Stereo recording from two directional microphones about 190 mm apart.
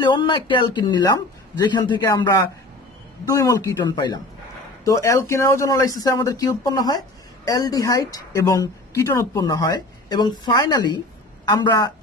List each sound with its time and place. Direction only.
0.0 s speech: 25° left (ahead or behind)